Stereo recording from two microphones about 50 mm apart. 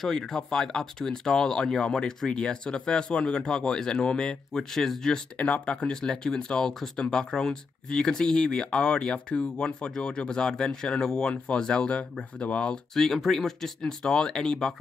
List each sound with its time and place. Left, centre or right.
0.0 s speech: centre
5.4 s speech: left
5.8 s speech: centre
12.9 s speech: centre